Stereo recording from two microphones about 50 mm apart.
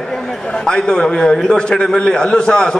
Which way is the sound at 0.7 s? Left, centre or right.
Centre.